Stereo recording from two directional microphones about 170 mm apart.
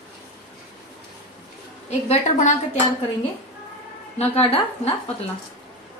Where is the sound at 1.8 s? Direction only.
40° left (ahead or behind).